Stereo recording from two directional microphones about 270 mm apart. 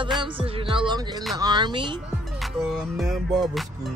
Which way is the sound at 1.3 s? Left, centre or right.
Centre.